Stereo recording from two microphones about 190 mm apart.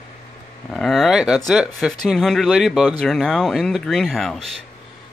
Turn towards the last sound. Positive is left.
turn(degrees=0)  # may be behind; listen again after turning